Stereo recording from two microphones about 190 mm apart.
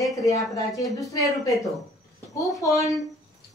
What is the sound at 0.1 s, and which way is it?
A woman's voice, 20° left (ahead or behind).